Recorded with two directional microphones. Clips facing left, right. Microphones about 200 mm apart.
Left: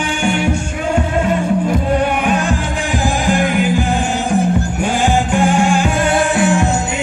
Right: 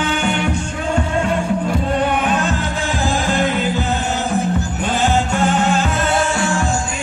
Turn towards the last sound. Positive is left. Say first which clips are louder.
# left 4 dB
turn(degrees=20)  # may be behind; listen again after turning